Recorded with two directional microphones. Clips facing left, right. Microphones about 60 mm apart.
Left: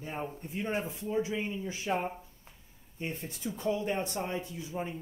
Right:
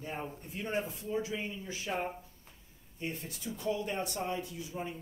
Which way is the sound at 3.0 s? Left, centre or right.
Left.